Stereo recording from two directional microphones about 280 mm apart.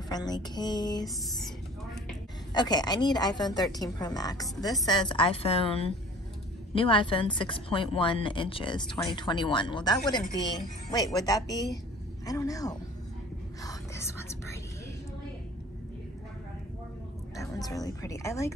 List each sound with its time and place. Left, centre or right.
0.1 s a woman's voice: centre
1.0 s a sound: centre
2.5 s a woman's voice: centre
13.7 s whispering: centre
17.4 s a woman's voice: centre